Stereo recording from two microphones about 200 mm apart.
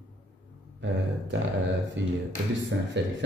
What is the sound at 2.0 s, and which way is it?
A man's voice, 65° right (ahead or behind).